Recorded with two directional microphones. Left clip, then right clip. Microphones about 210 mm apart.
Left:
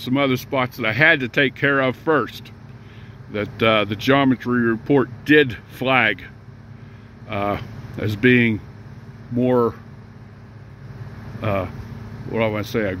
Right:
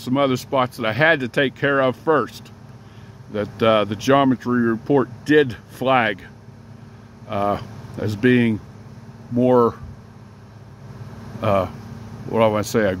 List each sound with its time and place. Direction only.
0.0 s speech: 5° right (ahead or behind)
7.2 s speech: 5° right (ahead or behind)
11.4 s speech: 10° right (ahead or behind)